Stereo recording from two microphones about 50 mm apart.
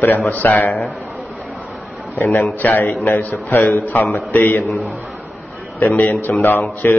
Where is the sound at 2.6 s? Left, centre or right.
Left.